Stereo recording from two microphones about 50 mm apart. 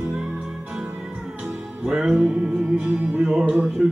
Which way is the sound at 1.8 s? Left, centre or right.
Centre.